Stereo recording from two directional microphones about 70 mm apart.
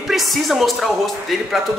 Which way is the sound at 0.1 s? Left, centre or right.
Centre.